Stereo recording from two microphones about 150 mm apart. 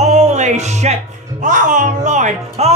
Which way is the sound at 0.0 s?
50° right (ahead or behind).